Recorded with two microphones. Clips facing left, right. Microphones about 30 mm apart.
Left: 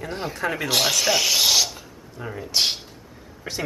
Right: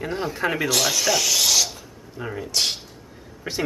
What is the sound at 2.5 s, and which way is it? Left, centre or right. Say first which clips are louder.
Speech: left 2 dB; centre.